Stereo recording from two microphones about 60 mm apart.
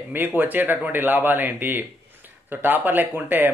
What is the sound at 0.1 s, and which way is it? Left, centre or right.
Speech, right.